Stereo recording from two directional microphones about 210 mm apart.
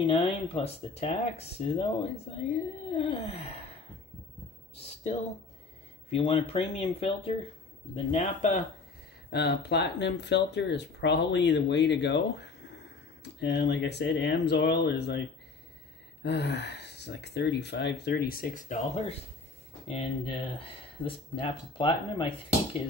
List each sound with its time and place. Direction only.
0.0 s speech: 25° left (ahead or behind)
4.7 s speech: 30° left (ahead or behind)
9.3 s speech: 50° left (ahead or behind); by 19.1 s 35° left (ahead or behind)
19.9 s speech: 25° left (ahead or behind)